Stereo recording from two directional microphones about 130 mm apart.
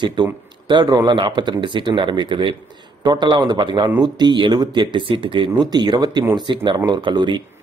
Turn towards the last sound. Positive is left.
turn(degrees=-35)  # may be behind; listen again after turning